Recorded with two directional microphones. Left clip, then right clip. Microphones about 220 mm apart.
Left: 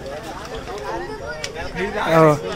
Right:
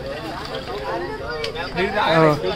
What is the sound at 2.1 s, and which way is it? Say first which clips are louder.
Speech: left 3 dB; 25° left (ahead or behind).